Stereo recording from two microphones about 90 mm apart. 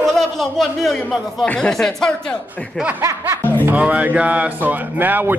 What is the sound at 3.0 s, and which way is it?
Speech, 30° right (ahead or behind).